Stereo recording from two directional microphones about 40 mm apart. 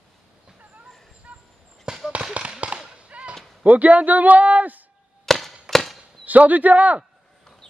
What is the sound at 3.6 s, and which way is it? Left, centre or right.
A man's voice, right.